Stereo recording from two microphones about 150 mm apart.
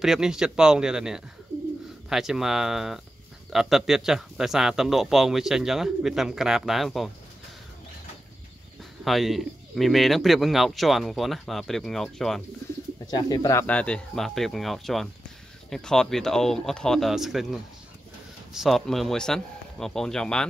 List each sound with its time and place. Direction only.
0.0 s speech: 5° right (ahead or behind)
9.0 s speech: centre (ahead or behind)
13.0 s speech: 25° left (ahead or behind)
13.7 s speech: 10° left (ahead or behind)